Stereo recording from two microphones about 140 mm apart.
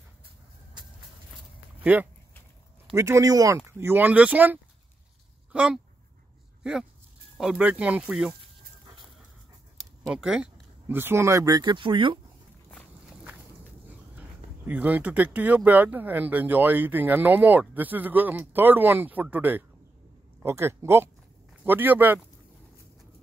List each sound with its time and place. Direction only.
1.8 s speech: 10° right (ahead or behind)
10.0 s speech: 5° right (ahead or behind); by 12.2 s 35° right (ahead or behind)
14.7 s speech: 10° right (ahead or behind)